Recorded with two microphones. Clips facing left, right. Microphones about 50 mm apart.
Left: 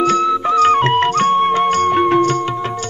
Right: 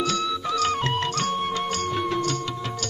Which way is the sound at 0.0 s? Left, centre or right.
Left.